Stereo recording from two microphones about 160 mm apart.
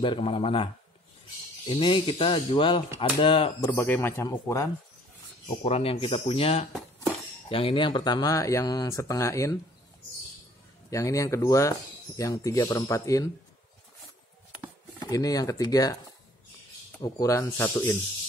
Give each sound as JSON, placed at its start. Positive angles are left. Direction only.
{"t": 0.0, "sound": "speech", "side_deg": 35}
{"t": 1.7, "sound": "speech", "side_deg": 30}
{"t": 3.6, "sound": "speech", "side_deg": 15}
{"t": 5.6, "sound": "speech", "side_deg": 40}
{"t": 10.9, "sound": "speech", "side_deg": 20}
{"t": 15.0, "sound": "speech", "side_deg": 20}
{"t": 17.0, "sound": "speech", "side_deg": 20}